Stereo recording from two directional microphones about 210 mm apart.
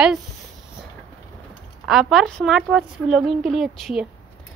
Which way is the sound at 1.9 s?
Centre (ahead or behind).